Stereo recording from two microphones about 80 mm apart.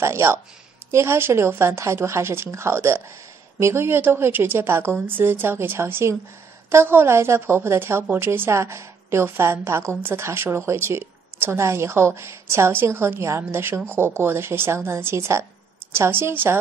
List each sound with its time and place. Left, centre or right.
0.0 s a woman's voice: right